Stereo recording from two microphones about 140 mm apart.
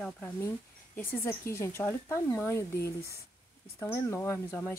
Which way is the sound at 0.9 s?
15° left (ahead or behind).